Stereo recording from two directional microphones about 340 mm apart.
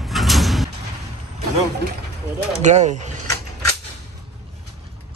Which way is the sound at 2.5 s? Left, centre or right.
Centre.